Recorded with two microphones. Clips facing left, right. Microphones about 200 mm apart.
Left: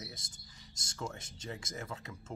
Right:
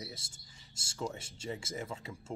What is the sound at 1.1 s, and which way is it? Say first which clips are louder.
Speech: right 3 dB; 10° right (ahead or behind).